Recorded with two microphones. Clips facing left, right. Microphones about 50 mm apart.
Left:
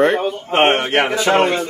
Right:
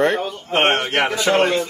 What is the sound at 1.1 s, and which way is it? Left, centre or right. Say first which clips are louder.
Speech: left 1 dB; left.